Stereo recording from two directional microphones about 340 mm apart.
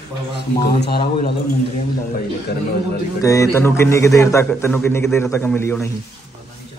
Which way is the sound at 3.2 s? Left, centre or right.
Centre.